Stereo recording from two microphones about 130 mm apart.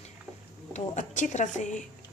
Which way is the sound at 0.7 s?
65° left (ahead or behind).